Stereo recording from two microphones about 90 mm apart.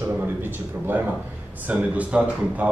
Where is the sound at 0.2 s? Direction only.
25° right (ahead or behind).